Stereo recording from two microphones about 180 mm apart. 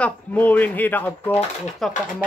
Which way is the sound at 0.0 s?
10° left (ahead or behind).